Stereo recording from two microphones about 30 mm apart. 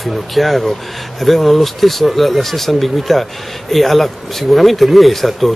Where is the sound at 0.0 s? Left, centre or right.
Centre.